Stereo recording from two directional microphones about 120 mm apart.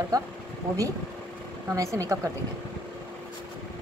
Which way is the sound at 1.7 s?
25° right (ahead or behind).